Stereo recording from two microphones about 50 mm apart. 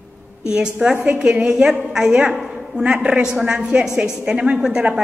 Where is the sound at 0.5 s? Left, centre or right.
Centre.